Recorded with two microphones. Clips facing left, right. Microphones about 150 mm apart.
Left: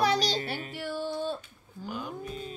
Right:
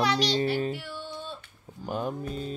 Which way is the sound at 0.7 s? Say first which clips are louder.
Left 6 dB; 45° left (ahead or behind).